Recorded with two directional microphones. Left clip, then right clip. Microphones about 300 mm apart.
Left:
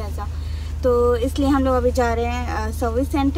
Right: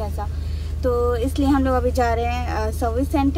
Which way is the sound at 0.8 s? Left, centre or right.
Centre.